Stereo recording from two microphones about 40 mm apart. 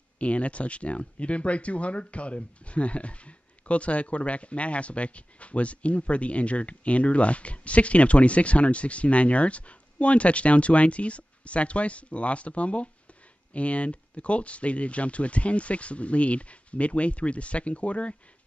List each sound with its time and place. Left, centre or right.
0.2 s speech: left